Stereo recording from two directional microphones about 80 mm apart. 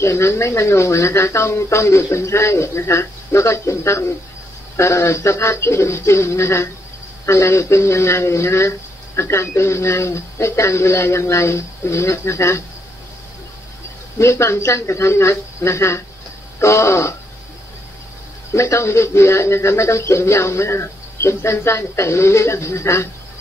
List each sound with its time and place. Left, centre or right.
0.0 s speech: left
14.1 s speech: left
18.5 s speech: left